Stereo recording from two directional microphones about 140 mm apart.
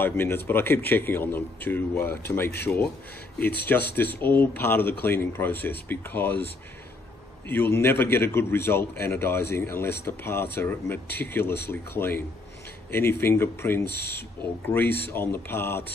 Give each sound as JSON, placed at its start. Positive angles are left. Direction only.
{"t": 0.0, "sound": "a man's voice", "side_deg": 15}
{"t": 7.4, "sound": "a man's voice", "side_deg": 15}